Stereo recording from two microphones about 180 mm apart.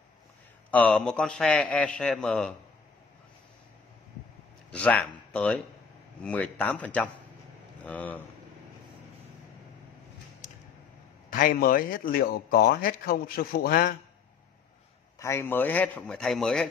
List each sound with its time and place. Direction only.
0.7 s a man's voice: 5° left (ahead or behind)
4.6 s a sound: 5° left (ahead or behind)
5.3 s a man's voice: 5° left (ahead or behind)
11.3 s speech: 50° left (ahead or behind)
15.1 s a man's voice: 15° left (ahead or behind)